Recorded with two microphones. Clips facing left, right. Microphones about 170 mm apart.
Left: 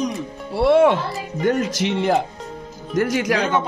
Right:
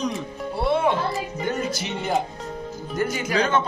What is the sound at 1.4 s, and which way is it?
Music, 85° left.